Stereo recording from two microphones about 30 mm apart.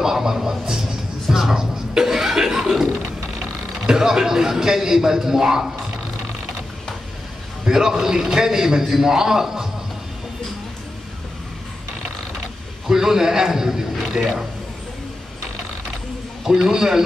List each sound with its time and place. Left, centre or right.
0.0 s a man's voice: centre
1.3 s chuckle: centre
3.8 s a man's voice: right
7.6 s a man's voice: centre
12.8 s a man's voice: centre
16.4 s a man's voice: centre